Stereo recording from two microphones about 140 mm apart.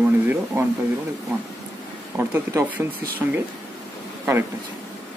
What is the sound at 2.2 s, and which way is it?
Speech, 15° right (ahead or behind).